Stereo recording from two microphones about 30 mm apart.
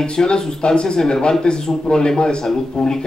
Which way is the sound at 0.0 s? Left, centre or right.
Left.